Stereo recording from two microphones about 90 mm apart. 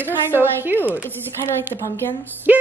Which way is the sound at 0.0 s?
25° right (ahead or behind).